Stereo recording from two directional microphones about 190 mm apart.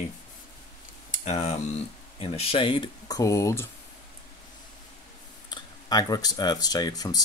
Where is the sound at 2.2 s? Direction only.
30° left (ahead or behind).